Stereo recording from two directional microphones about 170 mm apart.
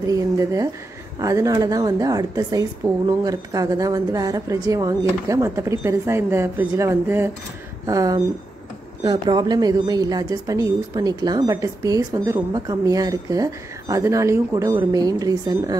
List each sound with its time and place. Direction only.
0.0 s a woman's voice: 20° right (ahead or behind)